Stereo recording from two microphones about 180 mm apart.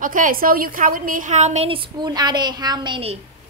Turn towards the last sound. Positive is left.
turn(degrees=-30)  # may be behind; listen again after turning